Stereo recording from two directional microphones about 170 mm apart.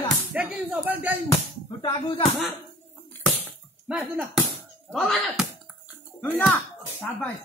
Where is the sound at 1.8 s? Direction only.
30° left (ahead or behind).